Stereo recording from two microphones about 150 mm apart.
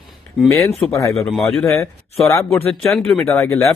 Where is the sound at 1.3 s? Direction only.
Centre (ahead or behind).